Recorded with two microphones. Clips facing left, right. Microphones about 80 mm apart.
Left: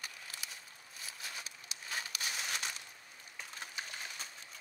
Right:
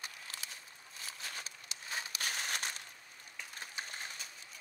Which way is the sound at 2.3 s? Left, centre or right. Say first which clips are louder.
Right 1 dB; right.